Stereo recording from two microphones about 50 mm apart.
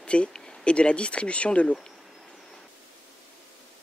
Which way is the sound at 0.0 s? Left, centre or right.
Left.